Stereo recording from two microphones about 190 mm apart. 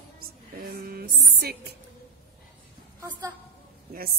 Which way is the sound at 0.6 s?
50° right (ahead or behind).